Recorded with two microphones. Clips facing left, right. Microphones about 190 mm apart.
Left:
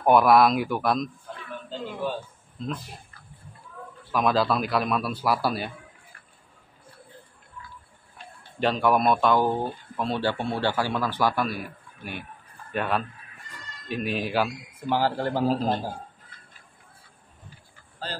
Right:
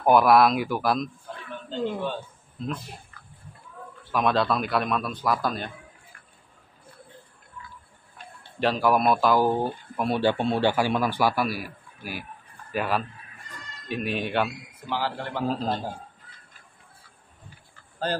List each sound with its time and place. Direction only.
0.0 s a man's voice: centre (ahead or behind)
4.0 s a man's voice: centre (ahead or behind)
8.5 s a man's voice: centre (ahead or behind)
14.9 s a man's voice: 45° left (ahead or behind)
15.4 s a man's voice: 10° left (ahead or behind)